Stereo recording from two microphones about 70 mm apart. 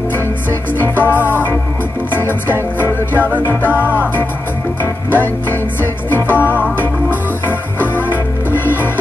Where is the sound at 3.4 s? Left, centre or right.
Left.